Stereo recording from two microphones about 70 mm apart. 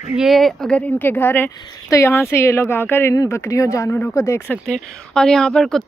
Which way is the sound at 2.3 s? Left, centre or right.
Left.